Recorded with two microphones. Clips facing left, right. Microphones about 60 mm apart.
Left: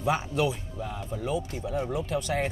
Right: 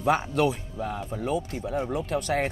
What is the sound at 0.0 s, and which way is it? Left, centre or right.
Speech, right.